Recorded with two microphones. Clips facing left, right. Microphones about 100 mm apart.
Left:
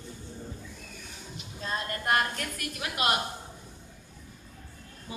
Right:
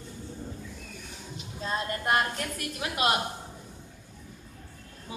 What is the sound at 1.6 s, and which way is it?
A woman's voice, 20° right (ahead or behind).